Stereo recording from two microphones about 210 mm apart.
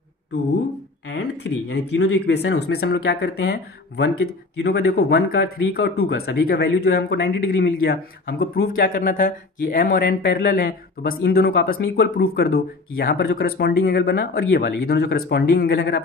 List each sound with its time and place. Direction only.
1.0 s speech: 60° left (ahead or behind)